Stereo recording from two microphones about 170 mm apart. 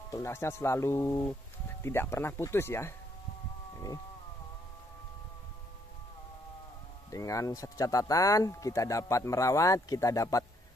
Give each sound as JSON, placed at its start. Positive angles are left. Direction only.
{"t": 0.1, "sound": "speech", "side_deg": 15}
{"t": 7.1, "sound": "speech", "side_deg": 20}